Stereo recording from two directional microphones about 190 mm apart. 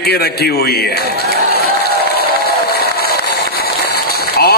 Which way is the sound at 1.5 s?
55° left (ahead or behind).